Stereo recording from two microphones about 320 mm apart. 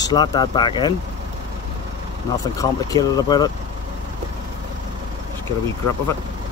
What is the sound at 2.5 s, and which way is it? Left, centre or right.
Speech, centre.